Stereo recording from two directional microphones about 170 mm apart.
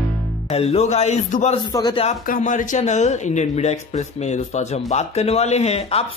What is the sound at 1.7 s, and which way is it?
Speech, 30° left (ahead or behind).